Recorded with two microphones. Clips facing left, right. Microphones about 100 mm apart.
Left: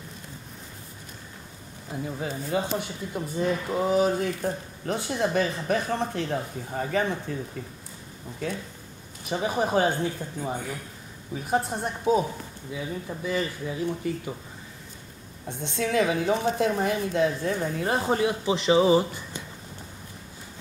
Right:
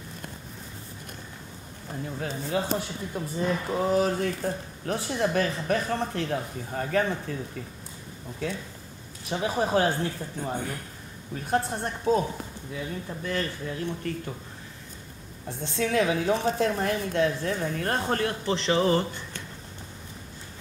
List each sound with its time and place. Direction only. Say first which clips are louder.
2.0 s speech: left 1 dB; 5° left (ahead or behind)
8.4 s speech: even; centre (ahead or behind)
15.4 s speech: even; centre (ahead or behind)